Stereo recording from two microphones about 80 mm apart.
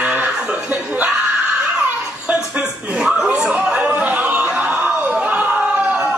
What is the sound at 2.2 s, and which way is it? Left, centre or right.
Speech, centre.